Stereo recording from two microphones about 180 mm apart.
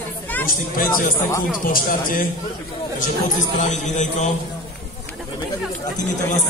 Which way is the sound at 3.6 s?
40° left (ahead or behind).